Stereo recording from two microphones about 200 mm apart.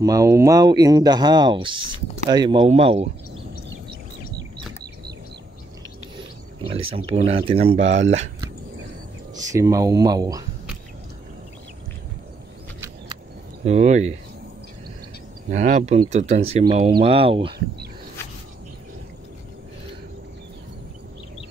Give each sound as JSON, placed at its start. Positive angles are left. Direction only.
{"t": 0.0, "sound": "speech", "side_deg": -15}
{"t": 6.7, "sound": "speech", "side_deg": -30}
{"t": 9.5, "sound": "speech", "side_deg": -15}
{"t": 13.7, "sound": "speech", "side_deg": -35}
{"t": 15.5, "sound": "speech", "side_deg": -35}